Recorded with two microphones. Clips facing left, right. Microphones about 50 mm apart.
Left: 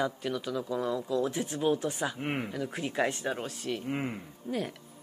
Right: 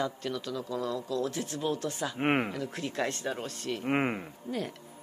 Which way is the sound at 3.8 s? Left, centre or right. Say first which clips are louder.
Right 8 dB; right.